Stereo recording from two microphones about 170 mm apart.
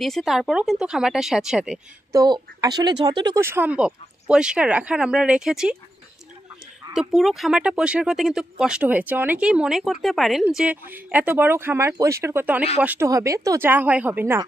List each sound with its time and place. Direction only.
0.0 s speech: centre (ahead or behind)
2.1 s a woman's voice: 20° right (ahead or behind)
3.3 s speech: 15° right (ahead or behind)
6.9 s speech: centre (ahead or behind)